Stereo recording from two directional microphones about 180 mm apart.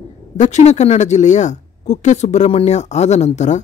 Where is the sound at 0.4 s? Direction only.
40° left (ahead or behind).